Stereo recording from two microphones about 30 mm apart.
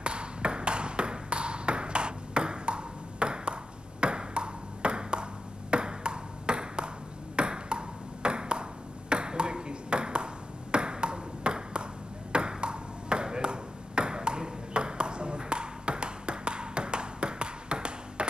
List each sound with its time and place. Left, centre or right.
0.0 s ping: right